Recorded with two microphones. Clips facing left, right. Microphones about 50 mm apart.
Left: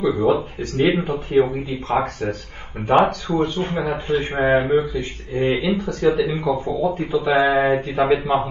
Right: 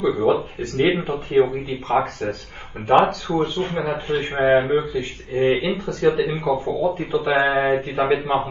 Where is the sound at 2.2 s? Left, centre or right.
Centre.